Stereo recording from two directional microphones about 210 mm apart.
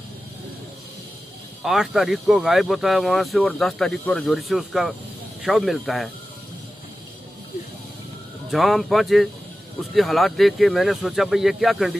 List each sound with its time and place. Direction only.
1.6 s speech: centre (ahead or behind)
8.5 s speech: centre (ahead or behind)